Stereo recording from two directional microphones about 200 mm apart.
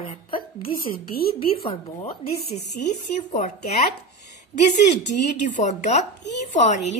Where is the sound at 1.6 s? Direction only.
30° left (ahead or behind).